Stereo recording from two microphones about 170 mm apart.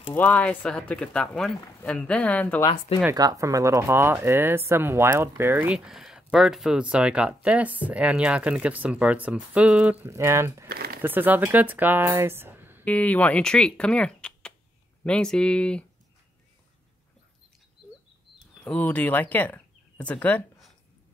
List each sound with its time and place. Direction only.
0.1 s speech: 10° left (ahead or behind)
2.6 s speech: 25° left (ahead or behind)
3.1 s speech: 20° right (ahead or behind)
10.7 s crumpling: 65° right (ahead or behind)
11.0 s speech: 10° right (ahead or behind)
12.8 s speech: 10° left (ahead or behind)
18.6 s speech: 10° left (ahead or behind)